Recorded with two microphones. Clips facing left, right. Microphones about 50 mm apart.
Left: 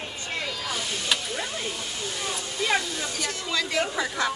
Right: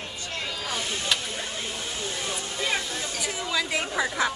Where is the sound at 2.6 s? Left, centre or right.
Left.